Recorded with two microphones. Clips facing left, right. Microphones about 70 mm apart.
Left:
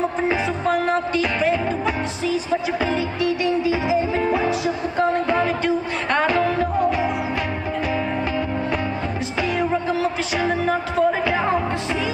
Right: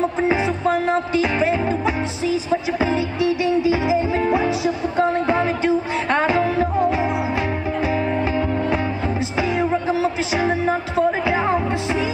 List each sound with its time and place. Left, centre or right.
0.3 s music: right
9.4 s music: centre